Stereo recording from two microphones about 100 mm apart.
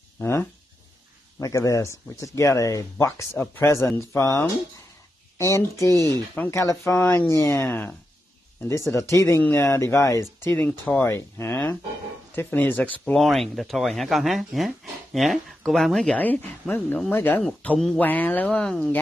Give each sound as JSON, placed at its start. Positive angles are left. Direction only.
{"t": 0.2, "sound": "speech", "side_deg": 25}
{"t": 1.4, "sound": "speech", "side_deg": 35}
{"t": 6.3, "sound": "speech", "side_deg": 15}
{"t": 6.6, "sound": "speech", "side_deg": 30}
{"t": 8.6, "sound": "speech", "side_deg": 30}
{"t": 13.1, "sound": "speech", "side_deg": 0}
{"t": 16.2, "sound": "speech", "side_deg": 15}
{"t": 17.4, "sound": "speech", "side_deg": 10}
{"t": 18.0, "sound": "speech", "side_deg": 20}